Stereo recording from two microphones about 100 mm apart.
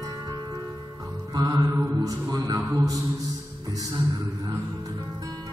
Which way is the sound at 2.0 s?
35° right (ahead or behind).